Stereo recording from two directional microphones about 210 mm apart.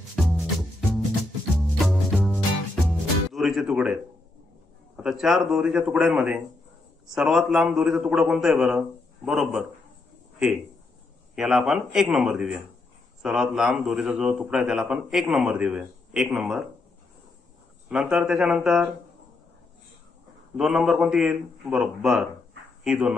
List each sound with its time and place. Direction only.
0.1 s music: centre (ahead or behind)
3.3 s speech: centre (ahead or behind)
4.9 s a man's voice: 5° right (ahead or behind)
11.3 s a man's voice: centre (ahead or behind)
17.8 s a man's voice: 5° right (ahead or behind)
20.5 s a man's voice: centre (ahead or behind)